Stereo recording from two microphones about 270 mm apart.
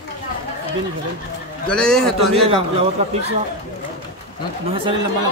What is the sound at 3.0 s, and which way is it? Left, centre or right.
Speech, right.